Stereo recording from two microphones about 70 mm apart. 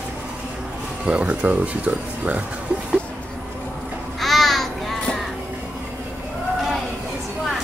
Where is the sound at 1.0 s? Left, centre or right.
Centre.